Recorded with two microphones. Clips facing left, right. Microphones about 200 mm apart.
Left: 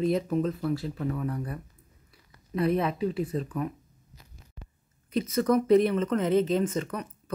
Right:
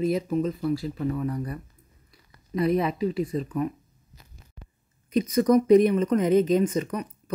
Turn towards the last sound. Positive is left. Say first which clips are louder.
# right 4 dB
turn(degrees=-15)  # may be behind; listen again after turning